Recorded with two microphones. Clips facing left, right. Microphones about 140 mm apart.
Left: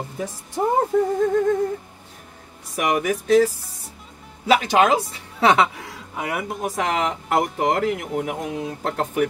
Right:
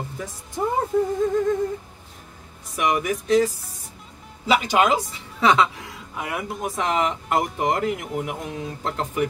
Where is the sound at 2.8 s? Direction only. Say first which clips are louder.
Left 1 dB; 55° left (ahead or behind).